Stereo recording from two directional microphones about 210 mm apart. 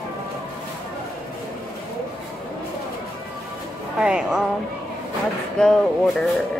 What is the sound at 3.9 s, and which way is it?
Speech, 5° right (ahead or behind).